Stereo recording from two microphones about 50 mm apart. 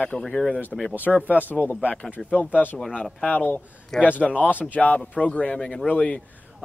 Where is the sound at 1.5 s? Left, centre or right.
Left.